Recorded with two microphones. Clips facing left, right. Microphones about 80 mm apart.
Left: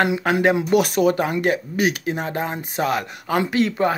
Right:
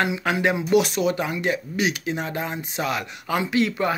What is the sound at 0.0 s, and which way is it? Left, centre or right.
Speech, left.